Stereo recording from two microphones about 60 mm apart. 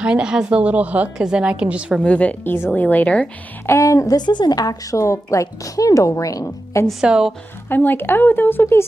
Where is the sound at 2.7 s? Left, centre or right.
Left.